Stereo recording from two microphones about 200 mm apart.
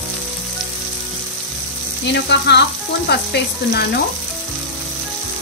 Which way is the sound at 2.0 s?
60° left (ahead or behind).